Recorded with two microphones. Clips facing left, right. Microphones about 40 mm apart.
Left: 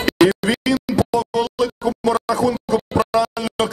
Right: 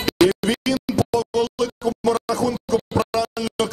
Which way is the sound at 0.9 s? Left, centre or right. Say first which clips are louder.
Left 2 dB; left.